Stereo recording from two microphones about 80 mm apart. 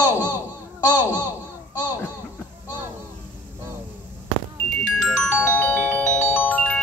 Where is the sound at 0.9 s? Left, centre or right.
Right.